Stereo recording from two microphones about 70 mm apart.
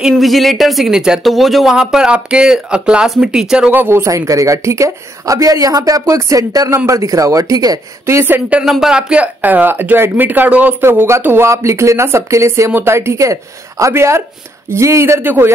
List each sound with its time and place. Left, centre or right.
0.1 s speech: centre
3.7 s speech: right
8.3 s speech: centre
8.6 s speech: centre
8.9 s speech: centre
10.8 s speech: right
11.5 s speech: right